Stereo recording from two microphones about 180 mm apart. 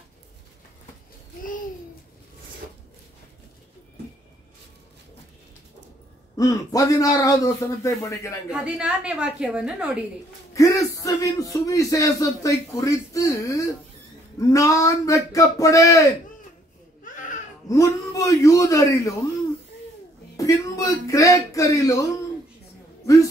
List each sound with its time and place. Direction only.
6.3 s a man's voice: 20° left (ahead or behind)
8.5 s a woman's voice: 5° right (ahead or behind)
10.5 s speech: 20° left (ahead or behind)
17.0 s a sound: 45° left (ahead or behind)
17.6 s a man's voice: 20° left (ahead or behind)
20.3 s a man's voice: 20° left (ahead or behind)